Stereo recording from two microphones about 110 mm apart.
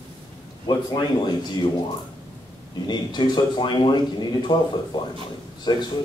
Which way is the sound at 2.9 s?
45° left (ahead or behind).